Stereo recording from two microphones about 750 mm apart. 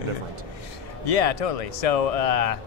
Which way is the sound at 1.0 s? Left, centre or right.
Left.